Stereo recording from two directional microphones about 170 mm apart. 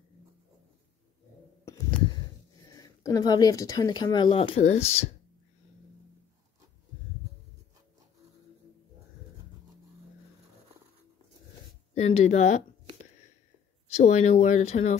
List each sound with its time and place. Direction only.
2.7 s speech: 20° left (ahead or behind); by 5.0 s 40° left (ahead or behind)
12.0 s speech: 45° left (ahead or behind)
13.9 s speech: 40° left (ahead or behind)